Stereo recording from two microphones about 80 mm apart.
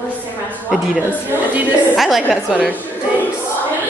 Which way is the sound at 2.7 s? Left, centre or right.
Left.